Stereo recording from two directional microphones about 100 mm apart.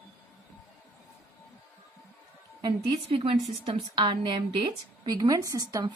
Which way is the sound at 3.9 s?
50° right (ahead or behind).